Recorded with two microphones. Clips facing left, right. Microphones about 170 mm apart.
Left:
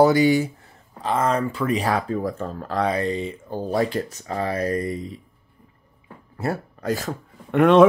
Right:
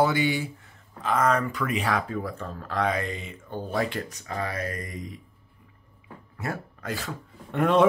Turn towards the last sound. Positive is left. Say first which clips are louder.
# left 7 dB
turn(degrees=80)